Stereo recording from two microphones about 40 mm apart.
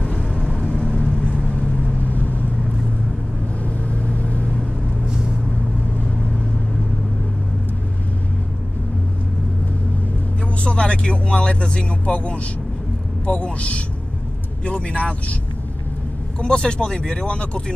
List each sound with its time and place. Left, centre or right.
0.0 s vehicle: left
2.0 s vehicle: left
4.1 s vehicle: left
5.1 s vehicle: centre
10.6 s speech: left
16.3 s speech: left